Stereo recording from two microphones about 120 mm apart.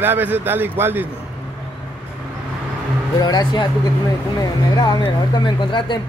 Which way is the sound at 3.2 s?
35° left (ahead or behind).